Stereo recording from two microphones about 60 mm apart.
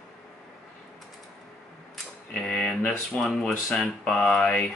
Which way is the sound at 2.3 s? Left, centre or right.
Centre.